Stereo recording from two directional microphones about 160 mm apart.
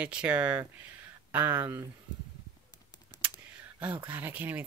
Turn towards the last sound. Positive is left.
turn(degrees=-10)  # may be behind; listen again after turning